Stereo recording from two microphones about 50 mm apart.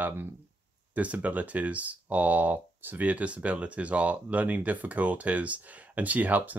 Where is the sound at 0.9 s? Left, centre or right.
Right.